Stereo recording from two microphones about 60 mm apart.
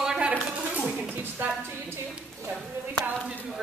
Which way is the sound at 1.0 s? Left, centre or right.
Right.